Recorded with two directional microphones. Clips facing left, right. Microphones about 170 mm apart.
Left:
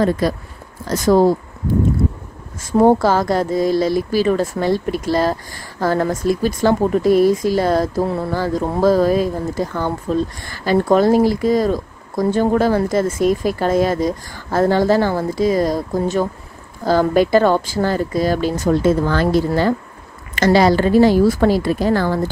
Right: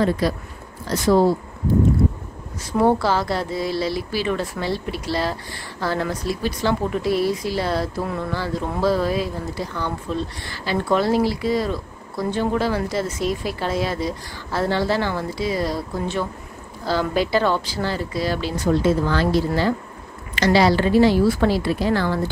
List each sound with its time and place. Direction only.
0.2 s a woman's voice: 50° left (ahead or behind)
2.6 s a woman's voice: 45° left (ahead or behind)